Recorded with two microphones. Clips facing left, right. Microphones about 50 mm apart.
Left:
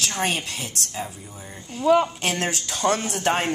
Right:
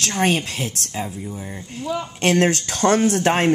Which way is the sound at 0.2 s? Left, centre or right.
Right.